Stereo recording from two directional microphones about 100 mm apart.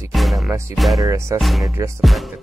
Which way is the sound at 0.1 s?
Centre (ahead or behind).